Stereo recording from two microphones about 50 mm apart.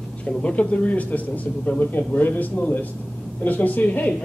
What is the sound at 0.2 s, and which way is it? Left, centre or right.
A man's voice, left.